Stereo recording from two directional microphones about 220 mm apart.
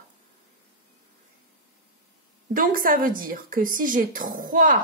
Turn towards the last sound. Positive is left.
turn(degrees=-40)  # may be behind; listen again after turning